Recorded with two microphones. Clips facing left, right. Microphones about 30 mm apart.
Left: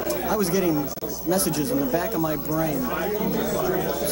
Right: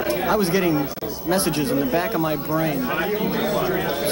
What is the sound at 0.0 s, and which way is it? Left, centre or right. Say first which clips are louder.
Speech: right 4 dB; right.